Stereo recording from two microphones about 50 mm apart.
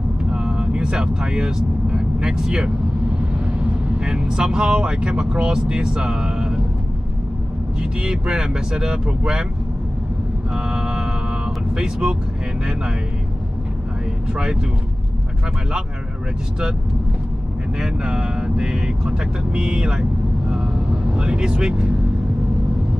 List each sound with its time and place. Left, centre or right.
0.2 s speech: centre
4.0 s speech: centre
7.8 s speech: centre
10.5 s vehicle: centre
11.7 s speech: centre
17.8 s speech: centre